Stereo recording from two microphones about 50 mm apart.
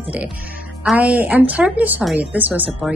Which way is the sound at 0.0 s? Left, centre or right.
Right.